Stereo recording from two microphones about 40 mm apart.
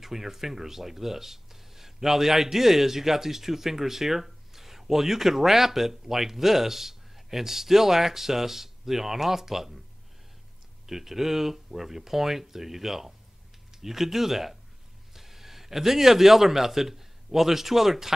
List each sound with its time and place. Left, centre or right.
0.0 s speech: centre
10.9 s a man's voice: centre